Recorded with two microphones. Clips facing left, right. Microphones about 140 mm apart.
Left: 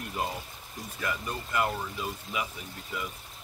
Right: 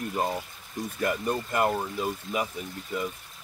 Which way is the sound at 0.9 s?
45° right (ahead or behind).